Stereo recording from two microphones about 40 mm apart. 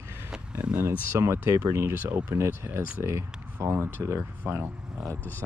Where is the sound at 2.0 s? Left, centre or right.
Right.